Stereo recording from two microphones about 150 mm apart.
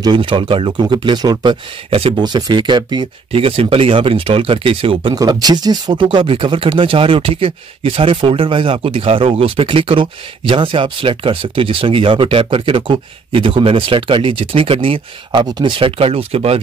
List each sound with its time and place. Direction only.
0.0 s speech: 30° right (ahead or behind)
5.2 s speech: 25° right (ahead or behind)